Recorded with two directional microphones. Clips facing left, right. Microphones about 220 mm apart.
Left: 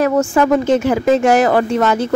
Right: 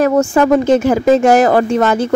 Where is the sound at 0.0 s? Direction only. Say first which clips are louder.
Right 2 dB; 40° right (ahead or behind).